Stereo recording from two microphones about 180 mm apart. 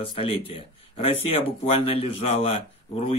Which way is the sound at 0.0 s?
30° left (ahead or behind).